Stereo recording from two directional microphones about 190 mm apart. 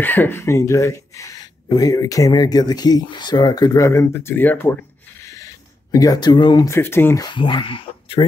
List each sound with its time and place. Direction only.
0.0 s speech: 10° left (ahead or behind)
7.2 s speech: 25° left (ahead or behind)